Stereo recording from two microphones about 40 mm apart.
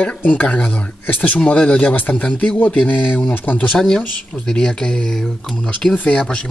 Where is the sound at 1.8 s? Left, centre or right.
Left.